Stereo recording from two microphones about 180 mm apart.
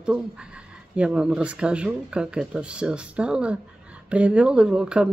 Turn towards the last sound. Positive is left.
turn(degrees=-5)  # may be behind; listen again after turning